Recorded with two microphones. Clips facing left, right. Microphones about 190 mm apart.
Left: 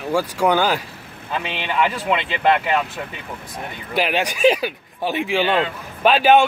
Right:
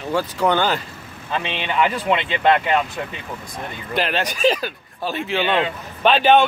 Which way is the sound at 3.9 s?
10° left (ahead or behind).